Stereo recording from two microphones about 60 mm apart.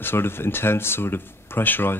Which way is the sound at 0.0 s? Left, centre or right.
Left.